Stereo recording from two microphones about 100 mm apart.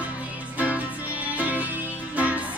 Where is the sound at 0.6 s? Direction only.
15° right (ahead or behind).